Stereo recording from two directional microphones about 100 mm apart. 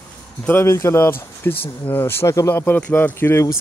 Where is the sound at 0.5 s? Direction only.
25° left (ahead or behind).